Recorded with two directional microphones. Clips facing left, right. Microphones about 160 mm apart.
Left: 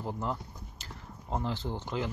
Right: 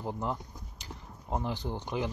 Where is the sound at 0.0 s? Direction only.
15° right (ahead or behind).